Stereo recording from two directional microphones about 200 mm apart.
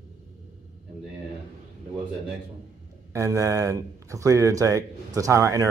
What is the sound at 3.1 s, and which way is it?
Speech, 15° right (ahead or behind).